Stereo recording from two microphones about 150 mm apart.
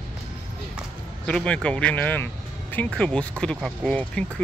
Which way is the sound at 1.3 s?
5° left (ahead or behind).